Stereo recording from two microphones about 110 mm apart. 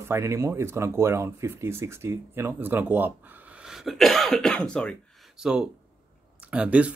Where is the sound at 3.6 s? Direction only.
Centre (ahead or behind).